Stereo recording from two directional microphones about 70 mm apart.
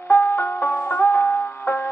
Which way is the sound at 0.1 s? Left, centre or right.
Left.